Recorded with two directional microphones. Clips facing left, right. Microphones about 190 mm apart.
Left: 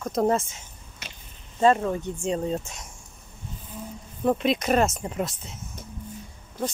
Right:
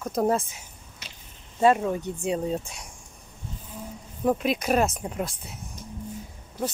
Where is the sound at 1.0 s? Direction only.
50° left (ahead or behind).